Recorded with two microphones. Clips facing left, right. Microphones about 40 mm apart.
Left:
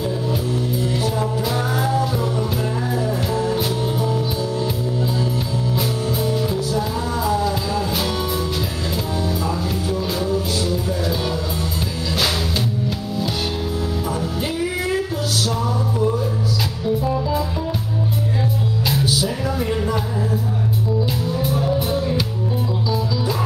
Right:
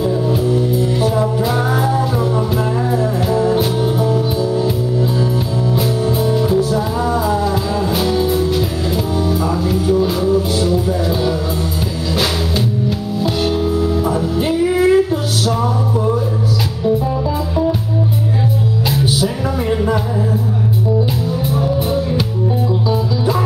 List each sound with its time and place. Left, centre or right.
0.0 s music: centre
1.0 s music: centre
5.8 s music: centre
14.0 s music: centre
18.9 s music: centre
21.7 s music: centre